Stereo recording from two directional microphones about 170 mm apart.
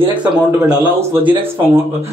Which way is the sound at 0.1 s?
10° right (ahead or behind).